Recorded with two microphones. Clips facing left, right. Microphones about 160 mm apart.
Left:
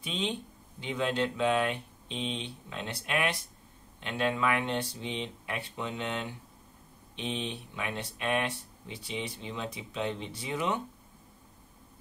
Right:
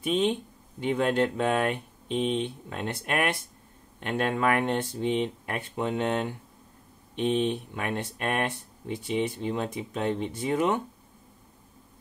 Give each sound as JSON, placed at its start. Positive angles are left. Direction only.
{"t": 0.0, "sound": "speech", "side_deg": -50}